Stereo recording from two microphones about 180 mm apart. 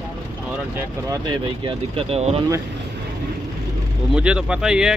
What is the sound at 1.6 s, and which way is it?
Speech, 35° right (ahead or behind).